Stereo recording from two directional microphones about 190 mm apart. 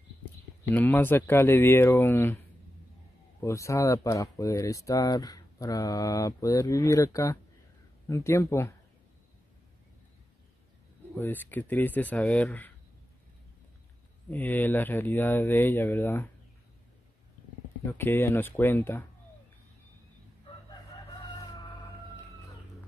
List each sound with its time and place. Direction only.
0.7 s speech: 10° left (ahead or behind)
3.4 s speech: 15° left (ahead or behind)
11.1 s speech: 10° left (ahead or behind)
14.3 s speech: 10° left (ahead or behind)
17.8 s speech: 10° left (ahead or behind)